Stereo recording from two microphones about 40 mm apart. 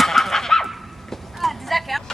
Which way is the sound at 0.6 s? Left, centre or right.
Centre.